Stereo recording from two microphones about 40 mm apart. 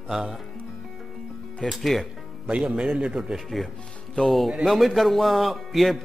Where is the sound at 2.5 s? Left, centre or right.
Right.